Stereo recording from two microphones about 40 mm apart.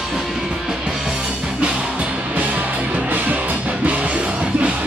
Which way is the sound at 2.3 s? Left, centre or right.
Right.